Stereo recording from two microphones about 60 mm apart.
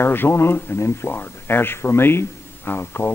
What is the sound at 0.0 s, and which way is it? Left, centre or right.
A man's voice, left.